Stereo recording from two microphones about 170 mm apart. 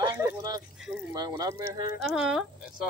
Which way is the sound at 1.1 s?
25° right (ahead or behind).